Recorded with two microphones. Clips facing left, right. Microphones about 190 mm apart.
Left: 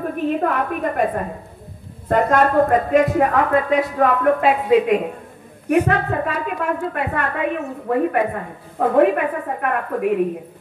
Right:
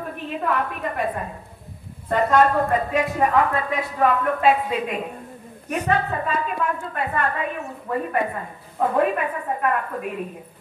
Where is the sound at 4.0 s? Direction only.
70° left (ahead or behind).